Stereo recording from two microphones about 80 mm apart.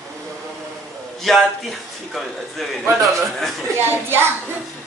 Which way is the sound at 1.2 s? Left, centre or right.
Centre.